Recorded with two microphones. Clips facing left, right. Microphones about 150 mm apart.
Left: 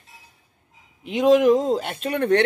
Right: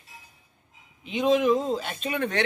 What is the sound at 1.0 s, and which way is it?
Speech, 80° left.